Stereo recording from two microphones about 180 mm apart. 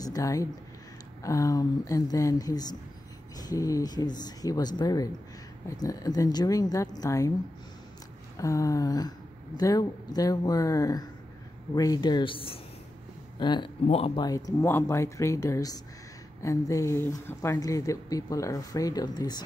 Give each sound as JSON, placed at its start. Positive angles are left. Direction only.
{"t": 0.0, "sound": "speech", "side_deg": 20}
{"t": 8.4, "sound": "speech", "side_deg": 20}